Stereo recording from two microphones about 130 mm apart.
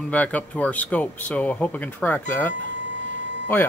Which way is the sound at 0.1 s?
10° left (ahead or behind).